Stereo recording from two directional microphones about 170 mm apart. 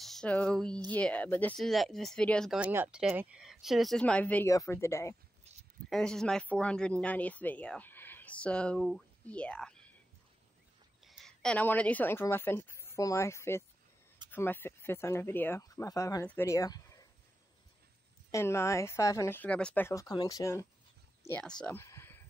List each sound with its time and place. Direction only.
0.0 s speech: 5° left (ahead or behind)
2.5 s speech: 10° right (ahead or behind); by 5.1 s 15° left (ahead or behind)
5.9 s speech: 5° left (ahead or behind)
11.1 s a woman's voice: centre (ahead or behind); by 17.0 s 20° left (ahead or behind)
18.3 s speech: 15° left (ahead or behind)
21.3 s speech: 5° left (ahead or behind)